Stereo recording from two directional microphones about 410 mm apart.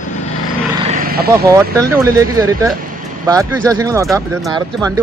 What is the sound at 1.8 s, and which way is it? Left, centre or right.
Speech, centre.